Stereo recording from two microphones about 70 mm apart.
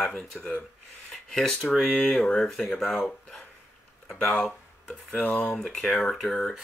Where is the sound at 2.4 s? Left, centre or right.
Centre.